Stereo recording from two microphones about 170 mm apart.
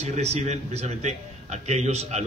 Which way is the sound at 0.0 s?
40° right (ahead or behind).